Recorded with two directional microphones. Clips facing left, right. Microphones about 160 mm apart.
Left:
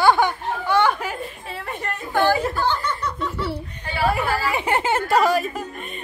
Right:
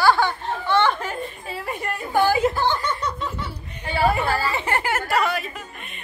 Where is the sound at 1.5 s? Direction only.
5° right (ahead or behind).